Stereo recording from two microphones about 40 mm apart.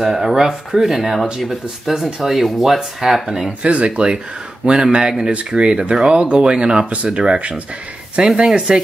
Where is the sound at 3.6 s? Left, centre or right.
Right.